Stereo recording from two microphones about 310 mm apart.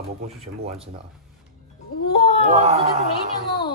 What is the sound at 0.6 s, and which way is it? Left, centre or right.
Speech, centre.